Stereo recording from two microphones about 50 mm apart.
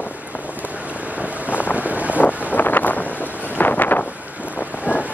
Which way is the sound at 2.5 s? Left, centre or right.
Left.